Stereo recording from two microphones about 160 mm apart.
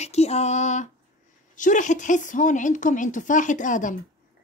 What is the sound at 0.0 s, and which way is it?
A woman's voice, 40° left (ahead or behind).